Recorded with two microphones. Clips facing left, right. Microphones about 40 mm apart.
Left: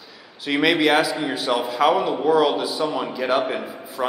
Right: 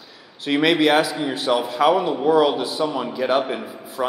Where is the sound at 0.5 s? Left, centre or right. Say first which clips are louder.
Right 1 dB; centre.